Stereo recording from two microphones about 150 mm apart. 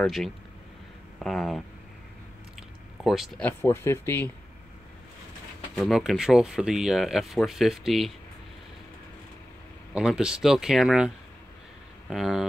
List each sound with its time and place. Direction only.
0.0 s speech: centre (ahead or behind)
3.0 s speech: centre (ahead or behind)
3.4 s speech: 15° left (ahead or behind)
5.8 s speech: centre (ahead or behind)
9.9 s speech: 5° right (ahead or behind)
12.1 s speech: centre (ahead or behind)